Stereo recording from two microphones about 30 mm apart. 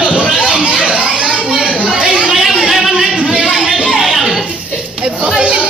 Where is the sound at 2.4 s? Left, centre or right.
Centre.